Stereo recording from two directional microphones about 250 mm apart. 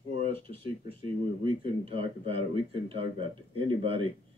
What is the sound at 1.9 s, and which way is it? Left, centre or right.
Speech, right.